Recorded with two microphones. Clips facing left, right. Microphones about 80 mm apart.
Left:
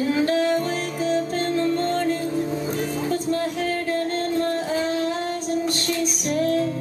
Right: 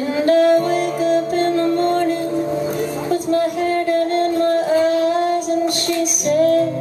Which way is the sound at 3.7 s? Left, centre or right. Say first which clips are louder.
Right 7 dB; right.